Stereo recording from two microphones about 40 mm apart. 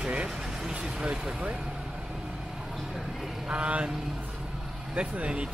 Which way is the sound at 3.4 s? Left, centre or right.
Right.